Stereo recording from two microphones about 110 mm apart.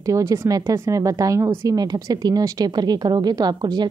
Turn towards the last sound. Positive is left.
turn(degrees=-40)  # may be behind; listen again after turning